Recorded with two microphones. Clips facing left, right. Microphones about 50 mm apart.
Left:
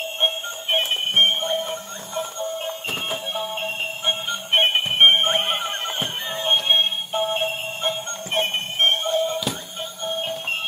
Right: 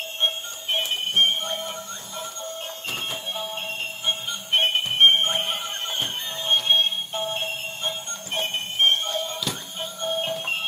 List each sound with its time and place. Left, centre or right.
0.2 s music: left
3.5 s music: left
5.9 s music: left
7.3 s music: left
9.0 s music: centre
9.5 s music: centre